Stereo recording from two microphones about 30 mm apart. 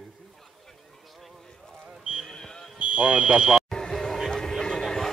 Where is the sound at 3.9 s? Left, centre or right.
Centre.